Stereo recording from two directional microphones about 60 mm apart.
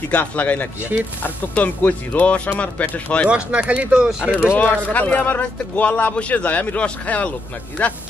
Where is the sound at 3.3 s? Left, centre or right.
Right.